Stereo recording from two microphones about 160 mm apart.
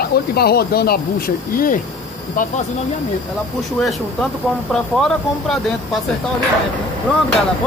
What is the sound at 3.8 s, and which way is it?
Speech, centre (ahead or behind).